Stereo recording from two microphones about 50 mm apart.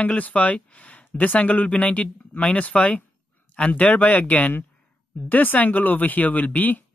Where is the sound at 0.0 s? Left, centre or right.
Left.